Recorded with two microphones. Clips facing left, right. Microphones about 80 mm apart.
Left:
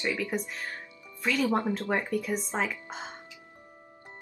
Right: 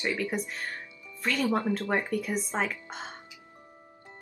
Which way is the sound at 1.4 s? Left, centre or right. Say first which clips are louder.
Right 1 dB; left.